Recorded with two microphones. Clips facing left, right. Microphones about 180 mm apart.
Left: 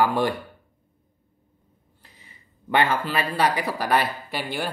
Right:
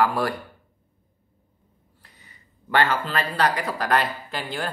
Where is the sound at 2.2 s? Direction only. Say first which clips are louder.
Left 5 dB; 15° left (ahead or behind).